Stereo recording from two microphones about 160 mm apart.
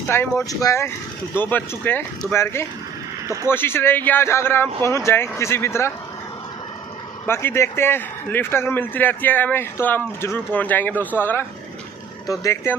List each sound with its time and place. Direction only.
0.1 s a man's voice: 15° left (ahead or behind)
7.2 s a man's voice: 15° left (ahead or behind)